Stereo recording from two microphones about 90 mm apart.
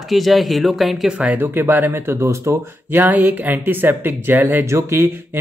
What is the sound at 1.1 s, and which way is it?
Speech, 15° right (ahead or behind).